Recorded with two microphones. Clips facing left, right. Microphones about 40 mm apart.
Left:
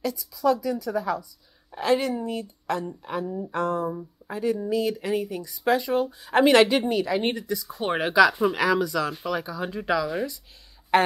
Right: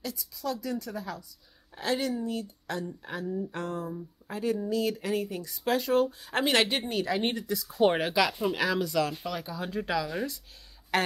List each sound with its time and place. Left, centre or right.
0.0 s speech: centre
10.9 s speech: centre